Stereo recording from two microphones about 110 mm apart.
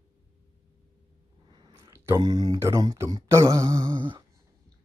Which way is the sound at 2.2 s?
40° right (ahead or behind).